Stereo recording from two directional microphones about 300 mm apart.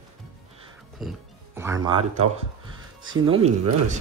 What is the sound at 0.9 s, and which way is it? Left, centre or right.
Speech, centre.